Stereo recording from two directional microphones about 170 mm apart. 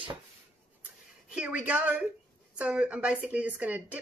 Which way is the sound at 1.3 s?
10° right (ahead or behind).